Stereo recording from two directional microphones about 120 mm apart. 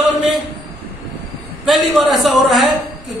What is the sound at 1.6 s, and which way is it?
A man's voice, centre (ahead or behind).